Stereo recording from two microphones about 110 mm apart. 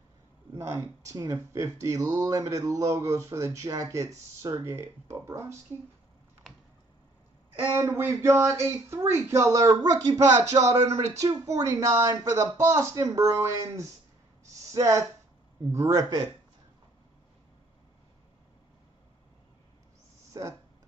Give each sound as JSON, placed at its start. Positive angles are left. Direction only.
{"t": 0.6, "sound": "speech", "side_deg": -30}
{"t": 7.7, "sound": "speech", "side_deg": -25}
{"t": 20.4, "sound": "speech", "side_deg": -35}